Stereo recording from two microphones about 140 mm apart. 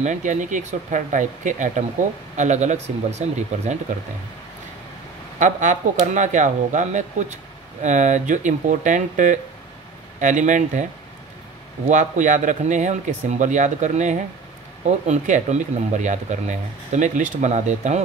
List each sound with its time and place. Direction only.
0.0 s speech: 60° right (ahead or behind)
5.4 s speech: 65° right (ahead or behind)
11.9 s speech: 65° right (ahead or behind)